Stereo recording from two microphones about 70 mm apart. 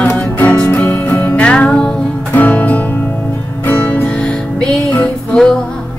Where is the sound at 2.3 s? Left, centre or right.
Left.